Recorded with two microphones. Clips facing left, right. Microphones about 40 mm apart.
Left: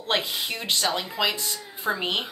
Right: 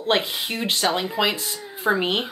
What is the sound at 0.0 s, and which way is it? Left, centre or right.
Speech, centre.